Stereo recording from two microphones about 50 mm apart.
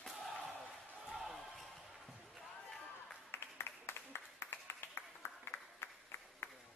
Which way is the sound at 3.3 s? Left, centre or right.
Left.